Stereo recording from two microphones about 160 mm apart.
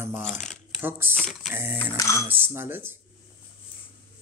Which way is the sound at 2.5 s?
15° right (ahead or behind).